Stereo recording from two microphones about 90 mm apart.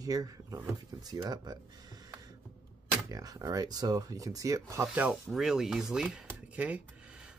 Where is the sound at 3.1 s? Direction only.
45° right (ahead or behind).